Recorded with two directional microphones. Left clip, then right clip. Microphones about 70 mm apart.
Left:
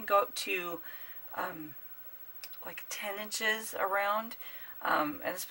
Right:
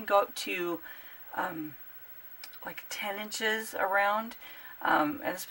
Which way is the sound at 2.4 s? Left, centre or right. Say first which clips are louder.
Right 3 dB; centre.